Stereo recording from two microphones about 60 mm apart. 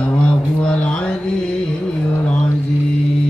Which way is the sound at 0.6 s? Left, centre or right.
Centre.